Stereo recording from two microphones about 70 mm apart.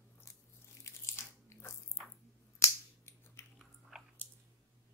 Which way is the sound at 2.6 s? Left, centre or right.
Left.